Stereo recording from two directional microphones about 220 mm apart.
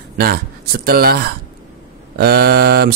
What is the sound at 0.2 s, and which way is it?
Speech, 45° right (ahead or behind).